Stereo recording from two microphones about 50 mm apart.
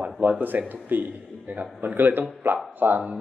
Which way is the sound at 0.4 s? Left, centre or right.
Right.